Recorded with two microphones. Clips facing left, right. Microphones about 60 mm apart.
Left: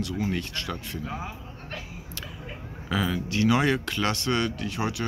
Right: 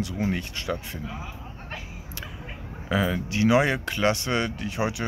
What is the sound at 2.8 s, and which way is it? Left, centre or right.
Speech, centre.